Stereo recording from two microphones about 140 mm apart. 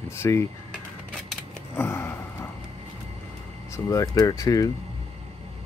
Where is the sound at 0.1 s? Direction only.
20° left (ahead or behind).